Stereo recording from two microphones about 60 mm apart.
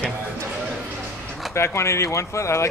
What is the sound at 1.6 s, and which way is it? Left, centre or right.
Speech, left.